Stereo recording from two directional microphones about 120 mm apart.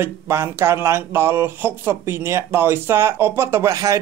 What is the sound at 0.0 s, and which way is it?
Speech, 20° right (ahead or behind).